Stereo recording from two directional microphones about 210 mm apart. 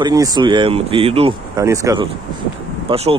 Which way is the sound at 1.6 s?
15° right (ahead or behind).